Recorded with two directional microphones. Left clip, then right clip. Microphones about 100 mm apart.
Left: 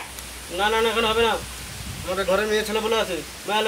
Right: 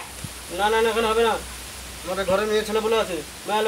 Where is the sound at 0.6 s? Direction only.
Centre (ahead or behind).